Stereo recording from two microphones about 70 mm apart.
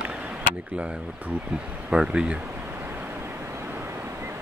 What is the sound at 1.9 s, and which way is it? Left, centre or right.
Speech, centre.